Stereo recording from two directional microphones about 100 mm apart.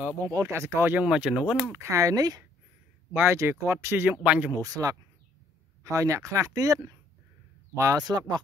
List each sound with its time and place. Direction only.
0.2 s speech: 30° right (ahead or behind)
1.0 s speech: 10° right (ahead or behind)
1.7 s speech: 30° right (ahead or behind)
3.1 s speech: 20° right (ahead or behind)
4.2 s speech: 15° right (ahead or behind)
4.6 s speech: 35° right (ahead or behind)
8.0 s speech: 45° right (ahead or behind)